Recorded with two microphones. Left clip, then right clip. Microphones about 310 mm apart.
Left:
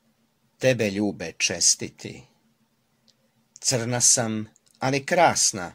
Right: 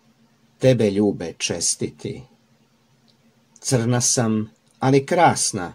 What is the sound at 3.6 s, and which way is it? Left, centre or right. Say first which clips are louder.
Speech: right 2 dB; left.